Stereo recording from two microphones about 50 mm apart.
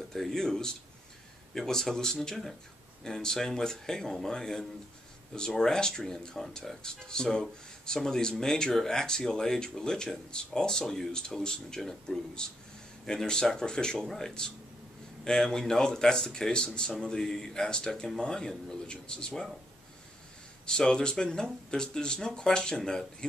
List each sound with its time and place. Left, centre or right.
0.1 s speech: centre
20.6 s speech: centre